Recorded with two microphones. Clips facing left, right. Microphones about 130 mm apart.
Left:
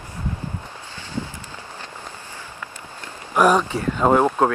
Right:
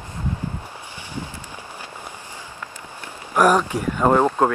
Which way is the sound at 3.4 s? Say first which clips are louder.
Even; 10° right (ahead or behind).